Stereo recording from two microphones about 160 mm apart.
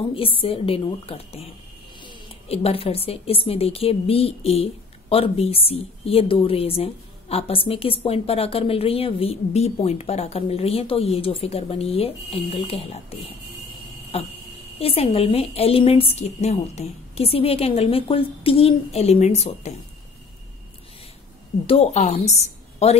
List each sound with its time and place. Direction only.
0.0 s a woman's voice: 35° left (ahead or behind)
14.1 s a woman's voice: 40° left (ahead or behind)
21.6 s a woman's voice: 45° left (ahead or behind)